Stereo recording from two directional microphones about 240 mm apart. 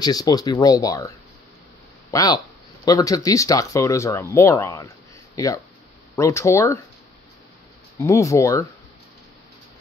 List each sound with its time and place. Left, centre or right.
0.0 s speech: centre
8.0 s speech: centre